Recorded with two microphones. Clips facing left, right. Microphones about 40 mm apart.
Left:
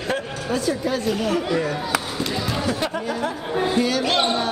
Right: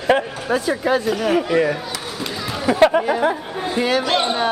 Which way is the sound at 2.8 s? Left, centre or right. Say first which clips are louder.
Right 10 dB; right.